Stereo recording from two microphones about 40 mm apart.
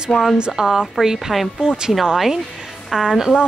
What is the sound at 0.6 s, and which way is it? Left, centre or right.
A woman's voice, centre.